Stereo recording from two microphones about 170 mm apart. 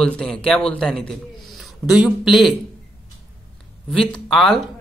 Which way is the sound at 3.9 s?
Centre (ahead or behind).